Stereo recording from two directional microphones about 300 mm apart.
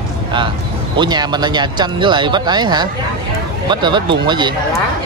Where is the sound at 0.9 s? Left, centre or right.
Centre.